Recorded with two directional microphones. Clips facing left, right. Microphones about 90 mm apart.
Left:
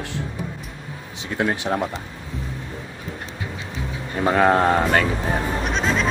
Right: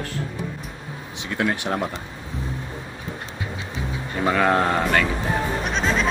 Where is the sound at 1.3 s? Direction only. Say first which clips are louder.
Left 1 dB; 25° left (ahead or behind).